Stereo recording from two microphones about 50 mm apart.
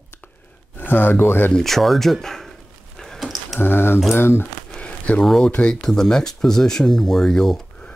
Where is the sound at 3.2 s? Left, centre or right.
Centre.